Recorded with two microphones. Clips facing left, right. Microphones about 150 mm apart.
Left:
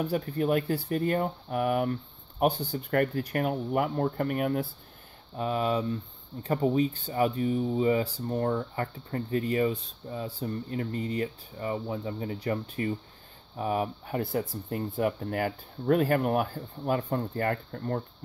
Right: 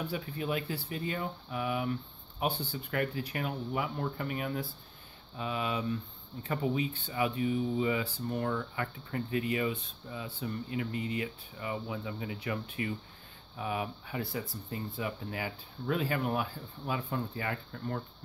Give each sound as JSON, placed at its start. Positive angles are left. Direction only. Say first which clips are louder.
{"t": 0.0, "sound": "speech", "louder": "left 8 dB", "side_deg": 45}
{"t": 5.4, "sound": "speech", "louder": "left 6 dB", "side_deg": 40}